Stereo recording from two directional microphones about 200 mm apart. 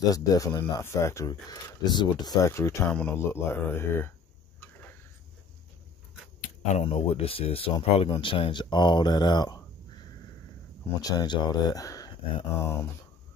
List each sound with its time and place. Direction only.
0.1 s speech: 15° left (ahead or behind)
6.6 s speech: 30° left (ahead or behind)
11.0 s speech: 20° left (ahead or behind)